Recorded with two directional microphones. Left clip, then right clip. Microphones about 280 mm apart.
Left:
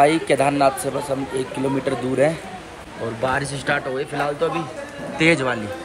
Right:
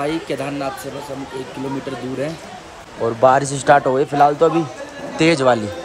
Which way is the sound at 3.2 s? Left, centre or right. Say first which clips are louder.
Right 9 dB; centre.